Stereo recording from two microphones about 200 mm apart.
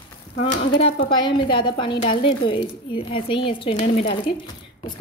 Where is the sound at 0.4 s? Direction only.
35° left (ahead or behind).